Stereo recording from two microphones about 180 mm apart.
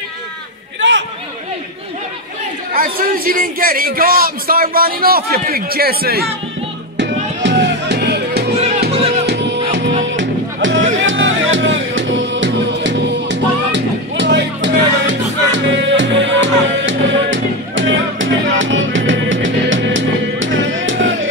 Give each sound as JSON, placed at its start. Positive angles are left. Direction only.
{"t": 0.7, "sound": "chatter", "side_deg": -90}
{"t": 2.7, "sound": "a man's voice", "side_deg": -50}
{"t": 7.0, "sound": "music", "side_deg": -80}
{"t": 8.5, "sound": "music", "side_deg": -35}
{"t": 10.1, "sound": "music", "side_deg": -90}